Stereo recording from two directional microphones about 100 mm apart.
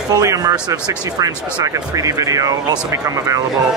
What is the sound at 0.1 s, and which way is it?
Speech, 35° right (ahead or behind).